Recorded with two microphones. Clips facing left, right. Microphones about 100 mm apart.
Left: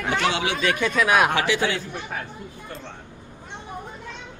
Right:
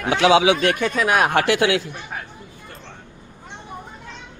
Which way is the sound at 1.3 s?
65° right (ahead or behind).